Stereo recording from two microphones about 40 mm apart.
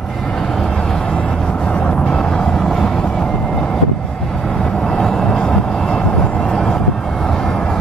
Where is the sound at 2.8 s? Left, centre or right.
Centre.